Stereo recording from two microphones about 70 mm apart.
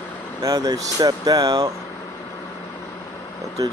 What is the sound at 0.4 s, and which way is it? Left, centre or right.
Speech, right.